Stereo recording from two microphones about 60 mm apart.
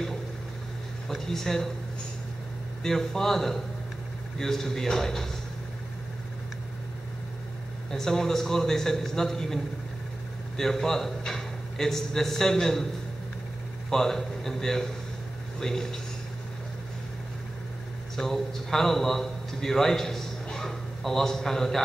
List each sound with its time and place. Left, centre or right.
1.0 s speech: centre
2.8 s a man's voice: centre
7.9 s a man's voice: centre
10.6 s a man's voice: centre
13.8 s a man's voice: centre
18.1 s a man's voice: centre